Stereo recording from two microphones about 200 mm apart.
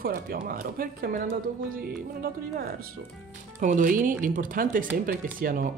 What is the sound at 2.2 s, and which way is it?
Speech, 45° right (ahead or behind).